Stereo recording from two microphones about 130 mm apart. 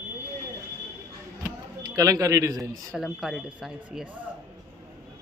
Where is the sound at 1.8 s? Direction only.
25° right (ahead or behind).